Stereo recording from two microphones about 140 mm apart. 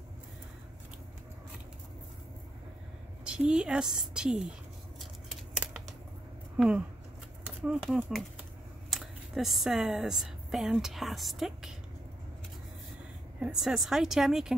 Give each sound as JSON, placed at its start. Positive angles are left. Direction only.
{"t": 3.3, "sound": "a woman's voice", "side_deg": -5}
{"t": 5.3, "sound": "a sound", "side_deg": -5}
{"t": 6.5, "sound": "a woman's voice", "side_deg": -5}
{"t": 13.4, "sound": "a woman's voice", "side_deg": -5}